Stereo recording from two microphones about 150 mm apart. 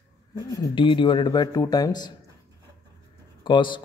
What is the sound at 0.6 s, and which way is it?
Speech, 30° left (ahead or behind).